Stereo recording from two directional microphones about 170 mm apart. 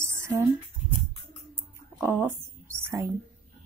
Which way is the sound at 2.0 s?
15° right (ahead or behind).